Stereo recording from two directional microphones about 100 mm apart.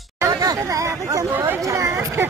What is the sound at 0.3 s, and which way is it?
Chatter, 40° right (ahead or behind).